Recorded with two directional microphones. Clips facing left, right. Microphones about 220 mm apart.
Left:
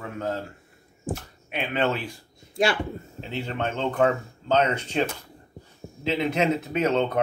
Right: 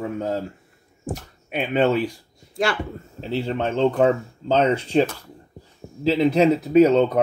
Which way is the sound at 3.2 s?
35° right (ahead or behind).